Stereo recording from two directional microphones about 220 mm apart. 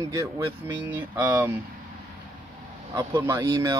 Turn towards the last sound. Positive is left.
turn(degrees=-15)  # may be behind; listen again after turning